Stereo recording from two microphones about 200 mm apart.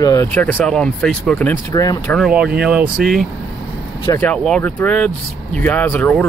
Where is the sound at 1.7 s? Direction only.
15° left (ahead or behind).